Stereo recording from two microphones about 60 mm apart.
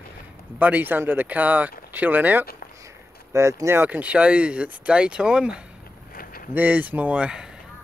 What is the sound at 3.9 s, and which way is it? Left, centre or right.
Speech, right.